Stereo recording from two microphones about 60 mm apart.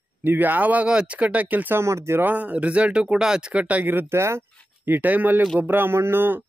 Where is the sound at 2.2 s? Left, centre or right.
Right.